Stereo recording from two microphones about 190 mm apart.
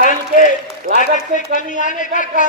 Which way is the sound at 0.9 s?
45° left (ahead or behind).